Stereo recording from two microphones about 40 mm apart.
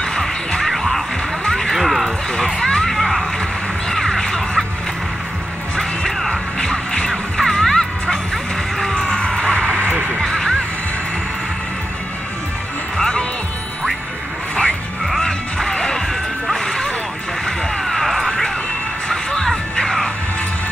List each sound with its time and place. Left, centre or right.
0.0 s music: centre
1.8 s a sound: centre
2.3 s a sound: centre
5.8 s music: centre
6.7 s music: left
7.1 s music: centre; by 9.9 s left
10.0 s music: centre
12.9 s music: centre
15.2 s music: centre
17.5 s a sound: centre
19.0 s music: centre